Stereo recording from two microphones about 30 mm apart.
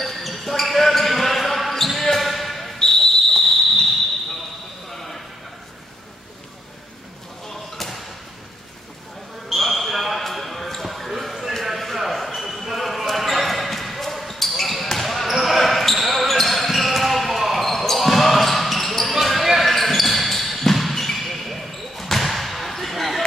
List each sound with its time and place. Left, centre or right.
0.0 s basketball bounce: centre
2.8 s a sound: centre
4.9 s a sound: centre
7.4 s slam: centre
9.5 s basketball bounce: centre
19.6 s basketball bounce: centre